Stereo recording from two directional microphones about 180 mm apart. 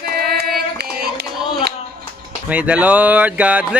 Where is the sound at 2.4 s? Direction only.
10° right (ahead or behind).